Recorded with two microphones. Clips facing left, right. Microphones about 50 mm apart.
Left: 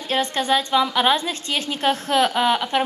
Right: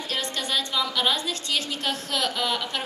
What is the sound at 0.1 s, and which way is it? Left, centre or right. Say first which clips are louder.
A woman's voice: left 9 dB; left.